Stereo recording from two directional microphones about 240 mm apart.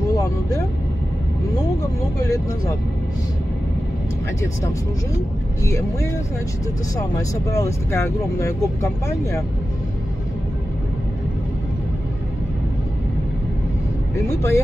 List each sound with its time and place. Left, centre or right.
0.1 s vehicle: centre
2.2 s speech: centre
5.7 s speech: centre
14.1 s speech: centre